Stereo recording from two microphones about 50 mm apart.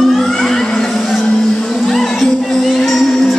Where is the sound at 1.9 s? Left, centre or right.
Centre.